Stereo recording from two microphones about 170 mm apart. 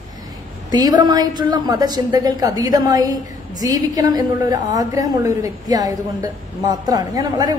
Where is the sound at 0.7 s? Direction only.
20° right (ahead or behind).